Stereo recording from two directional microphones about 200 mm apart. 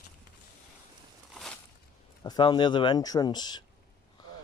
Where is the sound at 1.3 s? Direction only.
Centre (ahead or behind).